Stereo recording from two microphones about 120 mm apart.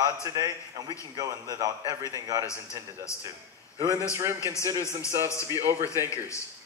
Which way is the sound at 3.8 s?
25° right (ahead or behind).